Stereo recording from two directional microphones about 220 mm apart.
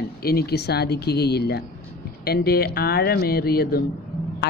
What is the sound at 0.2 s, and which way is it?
A woman's voice, 45° left (ahead or behind).